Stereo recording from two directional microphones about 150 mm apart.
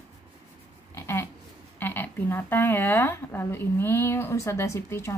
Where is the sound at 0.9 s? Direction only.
15° left (ahead or behind).